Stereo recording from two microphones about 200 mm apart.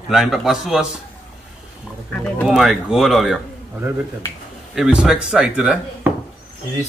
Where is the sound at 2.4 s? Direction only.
Centre (ahead or behind).